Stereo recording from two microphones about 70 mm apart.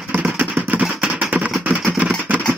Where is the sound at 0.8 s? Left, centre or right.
Centre.